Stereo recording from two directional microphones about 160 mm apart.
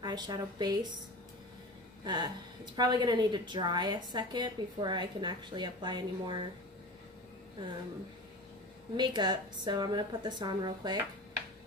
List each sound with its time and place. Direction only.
0.0 s a woman's voice: 25° right (ahead or behind)
2.0 s a woman's voice: 25° right (ahead or behind)
8.9 s a woman's voice: 25° right (ahead or behind)